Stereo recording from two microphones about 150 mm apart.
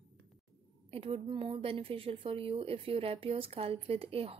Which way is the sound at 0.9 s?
40° right (ahead or behind).